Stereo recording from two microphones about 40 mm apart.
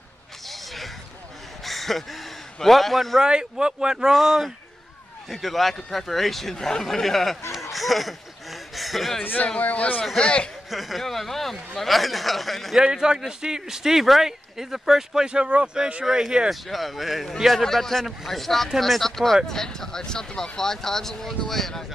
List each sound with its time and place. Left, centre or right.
0.5 s a sound: centre
3.3 s speech: right
4.1 s a man's voice: centre
7.5 s a sound: centre
9.2 s a man's voice: left
10.1 s speech: left
10.7 s a man's voice: centre
12.7 s speech: centre
15.2 s speech: right
16.4 s a man's voice: centre